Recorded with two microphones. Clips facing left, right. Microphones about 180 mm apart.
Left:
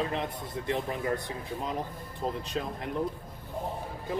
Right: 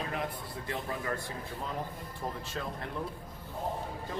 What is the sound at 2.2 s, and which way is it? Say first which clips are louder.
Speech: left 6 dB; 20° left (ahead or behind).